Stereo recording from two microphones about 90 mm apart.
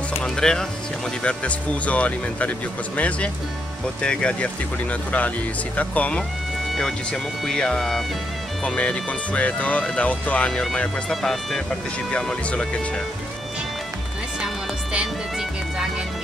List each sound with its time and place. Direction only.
0.2 s speech: 5° left (ahead or behind)
5.8 s speech: 15° left (ahead or behind)
14.4 s music: 10° right (ahead or behind)